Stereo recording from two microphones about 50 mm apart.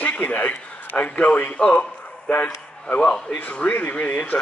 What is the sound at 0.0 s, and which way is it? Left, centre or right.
A man's voice, left.